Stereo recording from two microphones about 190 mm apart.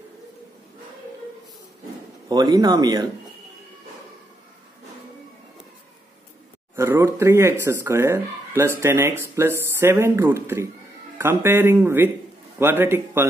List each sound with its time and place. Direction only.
2.2 s speech: 20° right (ahead or behind)
6.7 s speech: 15° right (ahead or behind)